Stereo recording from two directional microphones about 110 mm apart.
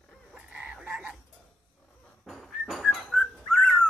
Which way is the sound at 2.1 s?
Centre (ahead or behind).